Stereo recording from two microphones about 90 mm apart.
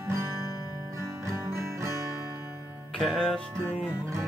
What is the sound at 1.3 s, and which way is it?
Music, 30° right (ahead or behind).